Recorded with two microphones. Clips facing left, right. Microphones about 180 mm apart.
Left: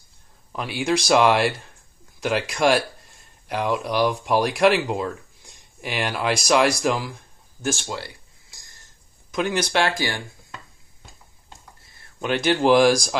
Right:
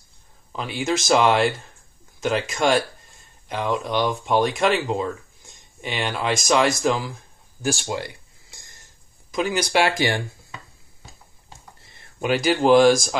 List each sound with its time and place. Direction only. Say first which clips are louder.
0.5 s speech: left 1 dB; 5° left (ahead or behind)
7.6 s speech: right 2 dB; 15° right (ahead or behind)
9.3 s speech: right 1 dB; 5° right (ahead or behind)
9.9 s speech: right 4 dB; 20° right (ahead or behind)
12.2 s speech: right 1 dB; 5° right (ahead or behind)